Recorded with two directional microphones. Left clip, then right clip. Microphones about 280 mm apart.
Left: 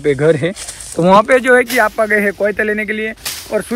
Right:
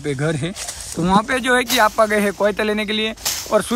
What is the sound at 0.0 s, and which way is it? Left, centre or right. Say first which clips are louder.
Speech: left 10 dB; centre.